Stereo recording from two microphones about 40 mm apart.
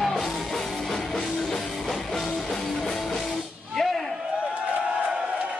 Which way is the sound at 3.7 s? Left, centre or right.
Centre.